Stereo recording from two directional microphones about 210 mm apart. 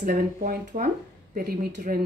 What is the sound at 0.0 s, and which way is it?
Speech, 40° right (ahead or behind).